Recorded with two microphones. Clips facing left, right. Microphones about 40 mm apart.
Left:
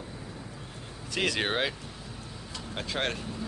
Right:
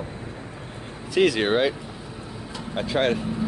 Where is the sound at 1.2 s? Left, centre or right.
Centre.